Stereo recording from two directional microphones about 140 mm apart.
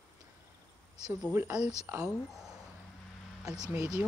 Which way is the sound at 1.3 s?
15° right (ahead or behind).